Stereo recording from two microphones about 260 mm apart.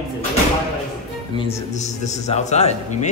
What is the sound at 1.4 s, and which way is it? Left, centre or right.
A man's voice, left.